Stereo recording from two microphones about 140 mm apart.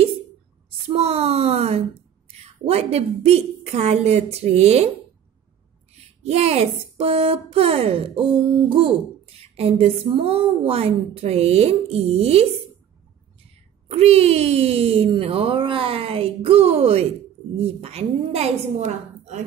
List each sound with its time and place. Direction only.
0.8 s a sound: 45° right (ahead or behind)
2.4 s speech: 45° right (ahead or behind)
5.9 s speech: 45° right (ahead or behind)
13.8 s speech: 45° right (ahead or behind)